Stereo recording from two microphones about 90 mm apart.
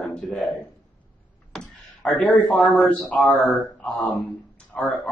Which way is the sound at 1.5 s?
10° left (ahead or behind).